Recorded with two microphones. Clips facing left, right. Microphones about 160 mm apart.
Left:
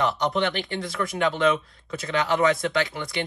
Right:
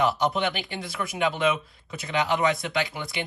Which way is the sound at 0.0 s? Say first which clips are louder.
Even; 5° right (ahead or behind).